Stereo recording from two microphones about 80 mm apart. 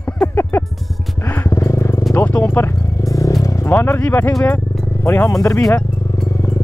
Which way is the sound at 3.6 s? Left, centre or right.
Left.